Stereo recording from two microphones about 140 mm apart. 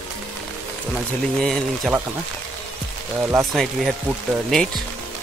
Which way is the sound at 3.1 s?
15° right (ahead or behind).